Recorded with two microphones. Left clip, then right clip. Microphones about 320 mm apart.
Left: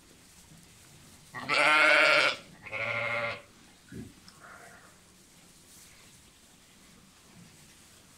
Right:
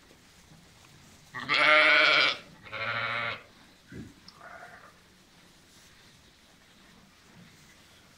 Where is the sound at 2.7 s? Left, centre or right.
Centre.